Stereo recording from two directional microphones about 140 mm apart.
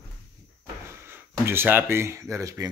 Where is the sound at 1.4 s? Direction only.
15° right (ahead or behind).